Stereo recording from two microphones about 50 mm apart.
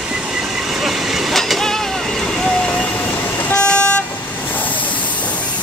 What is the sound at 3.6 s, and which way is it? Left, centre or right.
Vehicle, left.